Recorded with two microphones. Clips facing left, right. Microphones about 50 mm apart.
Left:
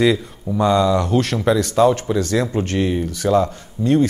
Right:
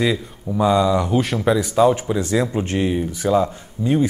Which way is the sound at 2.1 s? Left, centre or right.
Centre.